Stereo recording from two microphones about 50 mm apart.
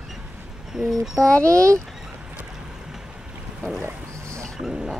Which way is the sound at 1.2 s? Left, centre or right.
Centre.